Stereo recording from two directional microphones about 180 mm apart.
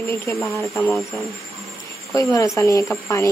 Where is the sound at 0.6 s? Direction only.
15° left (ahead or behind).